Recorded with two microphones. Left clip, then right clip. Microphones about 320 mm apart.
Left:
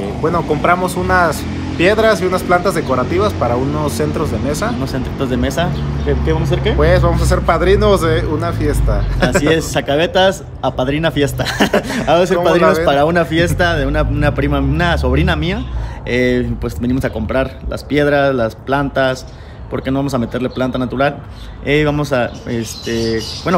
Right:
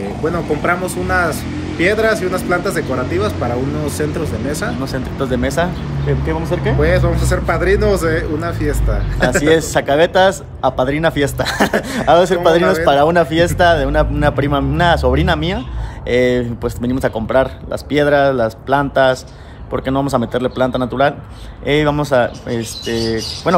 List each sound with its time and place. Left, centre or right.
0.2 s a man's voice: centre
9.4 s a man's voice: centre